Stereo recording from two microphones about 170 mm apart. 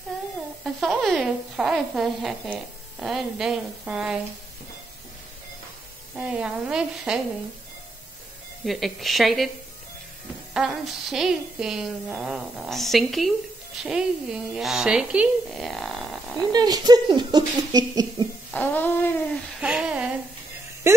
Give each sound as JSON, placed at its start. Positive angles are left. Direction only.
{"t": 0.7, "sound": "speech", "side_deg": 0}
{"t": 6.1, "sound": "speech", "side_deg": -5}
{"t": 8.6, "sound": "speech", "side_deg": 0}
{"t": 10.5, "sound": "speech", "side_deg": -5}
{"t": 16.5, "sound": "speech", "side_deg": -25}
{"t": 18.5, "sound": "a sound", "side_deg": 10}
{"t": 19.6, "sound": "speech", "side_deg": -5}
{"t": 20.9, "sound": "speech", "side_deg": -15}